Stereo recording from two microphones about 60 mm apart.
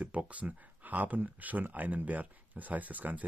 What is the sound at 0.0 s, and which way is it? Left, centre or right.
Speech, right.